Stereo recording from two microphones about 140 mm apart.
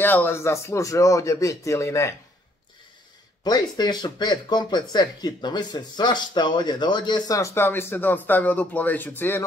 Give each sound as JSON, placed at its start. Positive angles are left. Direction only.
{"t": 0.0, "sound": "speech", "side_deg": 15}
{"t": 3.4, "sound": "speech", "side_deg": 30}